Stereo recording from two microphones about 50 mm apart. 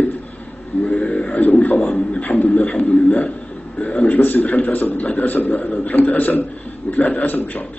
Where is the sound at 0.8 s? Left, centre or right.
Left.